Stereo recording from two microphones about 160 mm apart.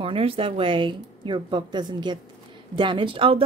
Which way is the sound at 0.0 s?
35° right (ahead or behind).